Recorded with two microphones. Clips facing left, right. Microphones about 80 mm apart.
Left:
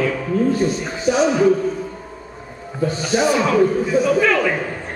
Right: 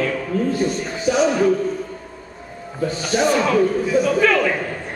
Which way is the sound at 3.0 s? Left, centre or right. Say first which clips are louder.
Even; centre.